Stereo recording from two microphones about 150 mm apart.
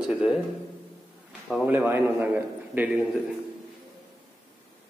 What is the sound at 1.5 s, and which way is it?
A man's voice, 5° right (ahead or behind).